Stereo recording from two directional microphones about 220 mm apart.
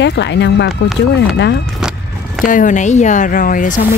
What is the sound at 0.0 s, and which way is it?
Speech, 50° left (ahead or behind).